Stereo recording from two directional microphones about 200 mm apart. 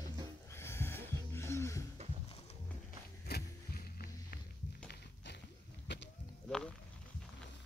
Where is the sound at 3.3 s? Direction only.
50° left (ahead or behind).